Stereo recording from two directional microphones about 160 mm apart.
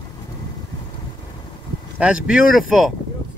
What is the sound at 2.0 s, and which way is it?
Speech, 5° right (ahead or behind).